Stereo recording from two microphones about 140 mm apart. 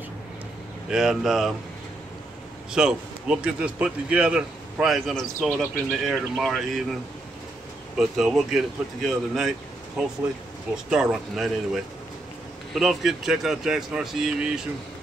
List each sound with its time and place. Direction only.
0.8 s speech: 5° right (ahead or behind)
2.7 s a man's voice: 5° right (ahead or behind)
8.0 s speech: centre (ahead or behind)